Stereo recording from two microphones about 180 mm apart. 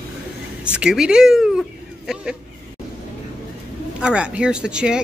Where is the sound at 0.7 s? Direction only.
5° right (ahead or behind).